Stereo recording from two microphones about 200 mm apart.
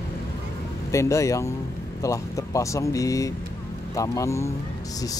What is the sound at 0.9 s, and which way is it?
Speech, 15° left (ahead or behind).